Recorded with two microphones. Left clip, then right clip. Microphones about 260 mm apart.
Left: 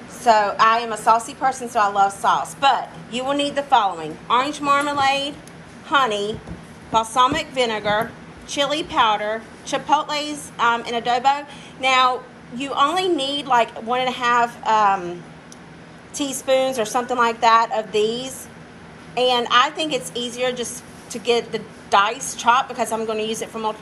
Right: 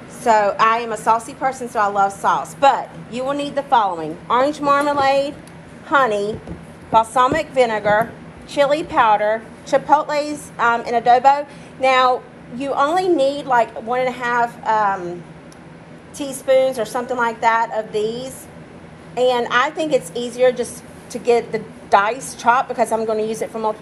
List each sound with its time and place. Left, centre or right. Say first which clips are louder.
0.2 s a woman's voice: right 1 dB; centre
12.5 s a woman's voice: right 2 dB; centre
16.2 s a woman's voice: right 3 dB; centre